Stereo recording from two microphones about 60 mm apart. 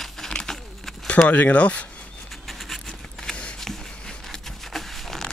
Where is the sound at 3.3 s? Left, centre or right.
Centre.